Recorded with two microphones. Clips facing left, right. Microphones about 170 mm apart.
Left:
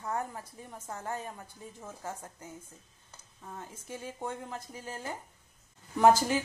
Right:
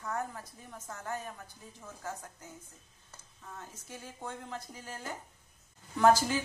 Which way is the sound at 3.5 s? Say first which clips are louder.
Left 5 dB; 20° left (ahead or behind).